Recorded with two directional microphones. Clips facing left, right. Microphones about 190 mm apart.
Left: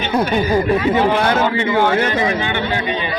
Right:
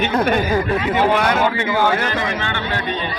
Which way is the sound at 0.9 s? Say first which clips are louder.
Left 1 dB; 30° left (ahead or behind).